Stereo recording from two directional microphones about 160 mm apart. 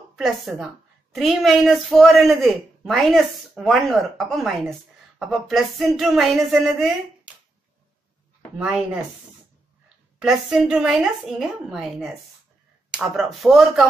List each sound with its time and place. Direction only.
0.1 s a woman's voice: centre (ahead or behind)
8.5 s speech: 5° right (ahead or behind)
10.1 s speech: 5° right (ahead or behind)